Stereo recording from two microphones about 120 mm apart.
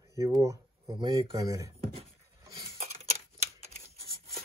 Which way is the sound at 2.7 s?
60° right (ahead or behind).